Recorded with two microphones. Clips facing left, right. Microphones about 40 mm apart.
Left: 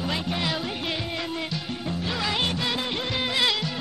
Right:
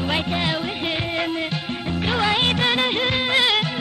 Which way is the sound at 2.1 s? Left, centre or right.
Right.